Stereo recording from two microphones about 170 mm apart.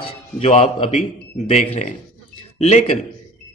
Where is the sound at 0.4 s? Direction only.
35° left (ahead or behind).